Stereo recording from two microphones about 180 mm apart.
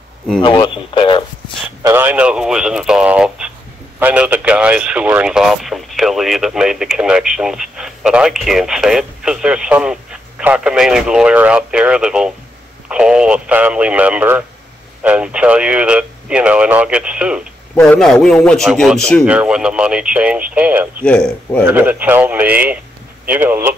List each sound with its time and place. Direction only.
0.4 s speech: 25° left (ahead or behind)
1.8 s speech: 15° right (ahead or behind)
21.0 s speech: 5° left (ahead or behind)
21.6 s speech: 10° right (ahead or behind)